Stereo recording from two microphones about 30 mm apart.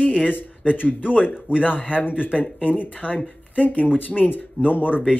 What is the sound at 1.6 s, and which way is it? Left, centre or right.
Speech, left.